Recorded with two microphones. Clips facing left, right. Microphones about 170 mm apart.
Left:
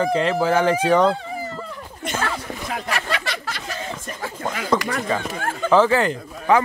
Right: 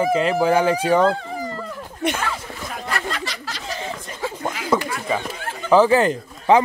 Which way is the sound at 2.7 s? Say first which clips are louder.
Left 1 dB; 80° left.